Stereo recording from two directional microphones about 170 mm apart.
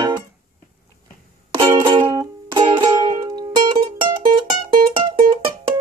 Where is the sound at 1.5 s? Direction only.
25° right (ahead or behind).